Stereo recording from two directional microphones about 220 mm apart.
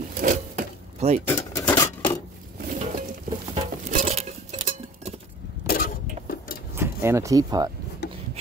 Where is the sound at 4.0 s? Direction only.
30° right (ahead or behind).